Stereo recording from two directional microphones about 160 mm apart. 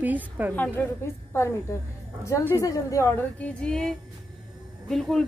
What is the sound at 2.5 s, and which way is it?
A woman's voice, 20° left (ahead or behind).